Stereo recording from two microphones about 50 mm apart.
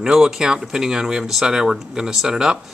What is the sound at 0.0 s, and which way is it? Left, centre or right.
Speech, centre.